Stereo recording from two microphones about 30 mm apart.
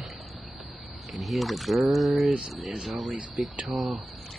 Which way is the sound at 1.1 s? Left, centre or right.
Centre.